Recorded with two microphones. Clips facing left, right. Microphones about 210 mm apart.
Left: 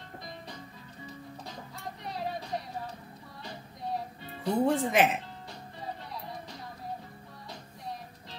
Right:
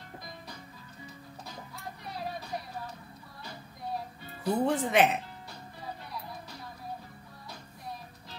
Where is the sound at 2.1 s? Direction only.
25° left (ahead or behind).